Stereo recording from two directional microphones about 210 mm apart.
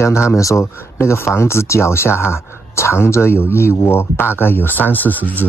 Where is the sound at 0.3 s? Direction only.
15° left (ahead or behind).